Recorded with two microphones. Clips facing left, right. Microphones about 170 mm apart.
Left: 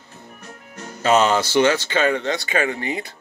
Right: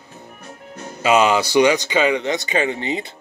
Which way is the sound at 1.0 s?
10° right (ahead or behind).